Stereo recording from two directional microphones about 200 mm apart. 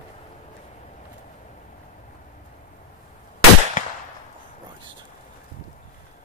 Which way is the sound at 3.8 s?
40° left (ahead or behind).